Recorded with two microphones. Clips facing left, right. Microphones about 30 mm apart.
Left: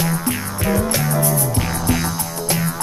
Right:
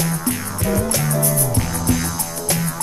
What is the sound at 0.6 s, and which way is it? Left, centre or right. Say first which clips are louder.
Music: left 1 dB; centre.